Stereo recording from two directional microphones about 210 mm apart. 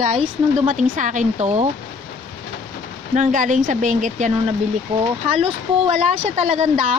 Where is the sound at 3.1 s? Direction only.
40° right (ahead or behind).